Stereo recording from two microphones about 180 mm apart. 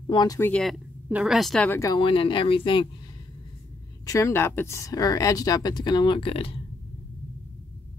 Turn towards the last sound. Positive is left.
turn(degrees=30)  # may be behind; listen again after turning